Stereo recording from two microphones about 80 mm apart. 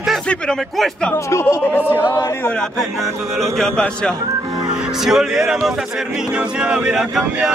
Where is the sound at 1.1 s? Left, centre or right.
Left.